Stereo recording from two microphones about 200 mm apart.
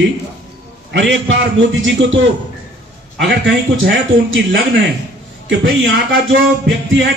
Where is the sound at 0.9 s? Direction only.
70° right (ahead or behind).